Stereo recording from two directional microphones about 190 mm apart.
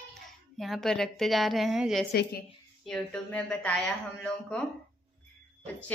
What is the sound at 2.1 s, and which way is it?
Speech, 60° left (ahead or behind).